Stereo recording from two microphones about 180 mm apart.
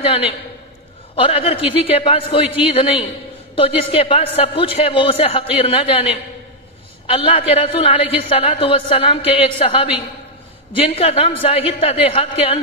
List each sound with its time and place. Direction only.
1.1 s a woman's voice: 30° left (ahead or behind)